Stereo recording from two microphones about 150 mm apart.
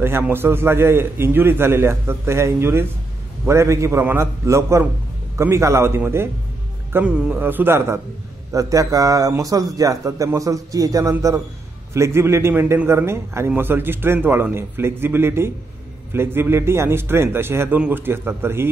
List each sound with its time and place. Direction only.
0.0 s a man's voice: 15° right (ahead or behind)